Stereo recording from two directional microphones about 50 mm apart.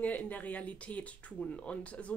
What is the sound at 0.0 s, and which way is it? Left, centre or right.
A woman's voice, left.